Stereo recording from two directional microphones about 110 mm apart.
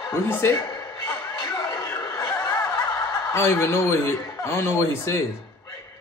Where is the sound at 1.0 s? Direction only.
30° left (ahead or behind).